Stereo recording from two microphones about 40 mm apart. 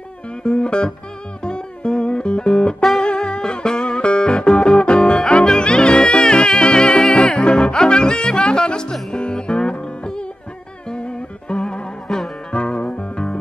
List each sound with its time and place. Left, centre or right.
0.4 s music: left